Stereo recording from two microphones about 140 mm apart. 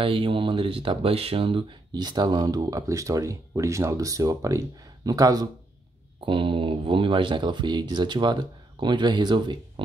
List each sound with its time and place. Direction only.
0.0 s speech: 35° right (ahead or behind)
6.2 s speech: 35° right (ahead or behind)